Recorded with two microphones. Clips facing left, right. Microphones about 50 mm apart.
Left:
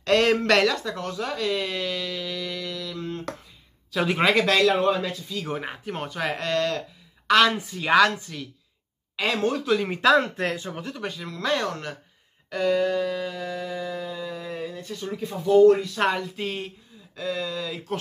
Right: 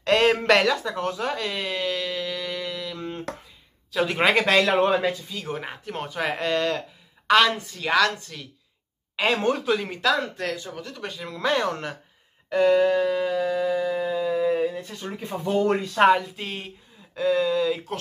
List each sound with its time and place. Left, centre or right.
0.0 s speech: centre
3.9 s speech: centre
4.2 s speech: centre
5.3 s speech: centre
7.4 s speech: centre
9.1 s speech: right
10.1 s speech: left
11.0 s speech: centre
12.4 s a sound: centre; by 16.0 s right
16.0 s speech: centre
17.1 s speech: centre